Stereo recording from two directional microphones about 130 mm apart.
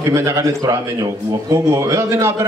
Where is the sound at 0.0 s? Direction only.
20° right (ahead or behind).